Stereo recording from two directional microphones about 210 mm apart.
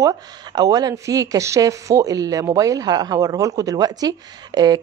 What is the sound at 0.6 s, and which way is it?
Speech, 20° right (ahead or behind).